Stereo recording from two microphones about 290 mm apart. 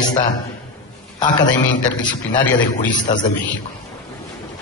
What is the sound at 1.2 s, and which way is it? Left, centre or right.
A man's voice, centre.